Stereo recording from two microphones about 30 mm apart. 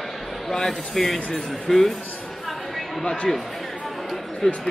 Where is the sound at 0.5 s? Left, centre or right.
Centre.